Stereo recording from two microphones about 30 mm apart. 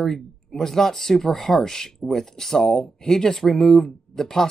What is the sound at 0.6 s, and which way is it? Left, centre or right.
Speech, centre.